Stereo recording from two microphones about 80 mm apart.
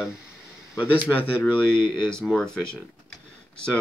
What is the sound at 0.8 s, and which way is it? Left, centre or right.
Speech, left.